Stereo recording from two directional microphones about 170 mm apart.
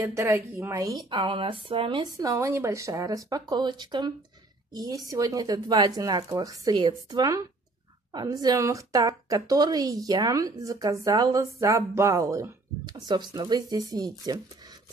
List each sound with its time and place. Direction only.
0.0 s a woman's voice: 15° right (ahead or behind)